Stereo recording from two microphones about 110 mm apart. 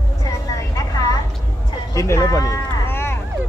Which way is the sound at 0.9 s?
35° left (ahead or behind).